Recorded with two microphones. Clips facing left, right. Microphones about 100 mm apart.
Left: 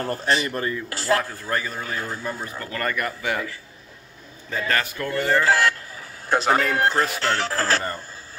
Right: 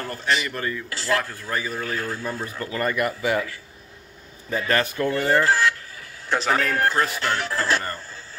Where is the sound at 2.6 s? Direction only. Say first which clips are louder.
Right 3 dB; 20° right (ahead or behind).